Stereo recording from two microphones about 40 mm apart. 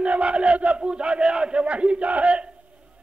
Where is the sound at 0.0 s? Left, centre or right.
Right.